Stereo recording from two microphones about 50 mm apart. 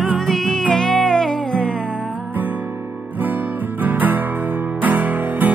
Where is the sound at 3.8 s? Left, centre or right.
Right.